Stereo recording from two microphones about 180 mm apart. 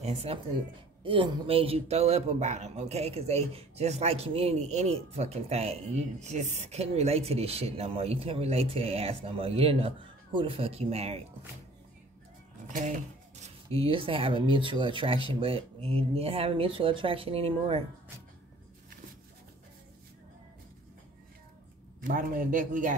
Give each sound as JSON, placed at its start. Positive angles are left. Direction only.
{"t": 0.0, "sound": "speech", "side_deg": -35}
{"t": 12.6, "sound": "a sound", "side_deg": -45}
{"t": 13.4, "sound": "speech", "side_deg": -35}
{"t": 22.0, "sound": "a man's voice", "side_deg": -50}